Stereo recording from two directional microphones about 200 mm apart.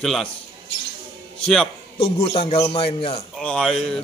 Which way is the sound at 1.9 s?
30° left (ahead or behind).